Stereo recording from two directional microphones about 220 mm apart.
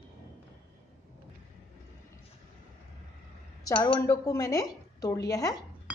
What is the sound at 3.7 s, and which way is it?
A woman's voice, 20° left (ahead or behind).